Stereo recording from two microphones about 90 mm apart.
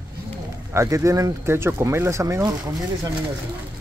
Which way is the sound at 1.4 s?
30° right (ahead or behind).